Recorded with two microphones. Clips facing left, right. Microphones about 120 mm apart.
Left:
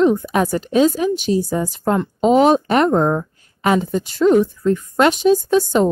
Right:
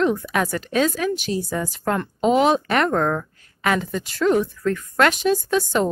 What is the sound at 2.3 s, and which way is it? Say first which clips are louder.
A woman's voice: left 4 dB; 40° left (ahead or behind).